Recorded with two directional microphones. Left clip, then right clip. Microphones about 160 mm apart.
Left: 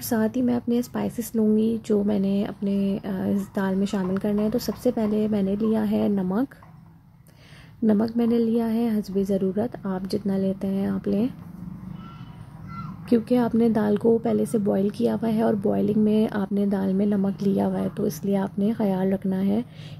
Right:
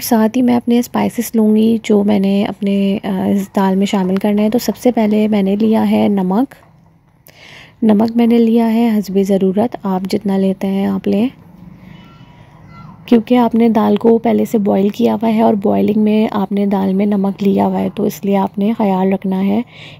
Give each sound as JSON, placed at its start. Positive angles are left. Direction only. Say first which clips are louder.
{"t": 0.0, "sound": "a woman's voice", "louder": "right 11 dB", "side_deg": -25}
{"t": 7.8, "sound": "a woman's voice", "louder": "right 10 dB", "side_deg": -25}
{"t": 13.1, "sound": "a woman's voice", "louder": "right 10 dB", "side_deg": -20}